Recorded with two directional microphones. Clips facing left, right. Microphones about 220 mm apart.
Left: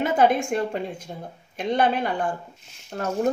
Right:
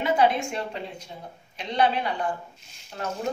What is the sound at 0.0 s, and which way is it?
Speech, 50° left (ahead or behind).